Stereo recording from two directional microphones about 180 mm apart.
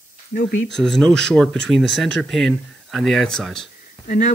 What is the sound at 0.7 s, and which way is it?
Speech, 5° left (ahead or behind).